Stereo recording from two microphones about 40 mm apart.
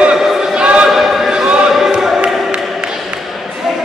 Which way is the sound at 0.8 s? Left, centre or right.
Centre.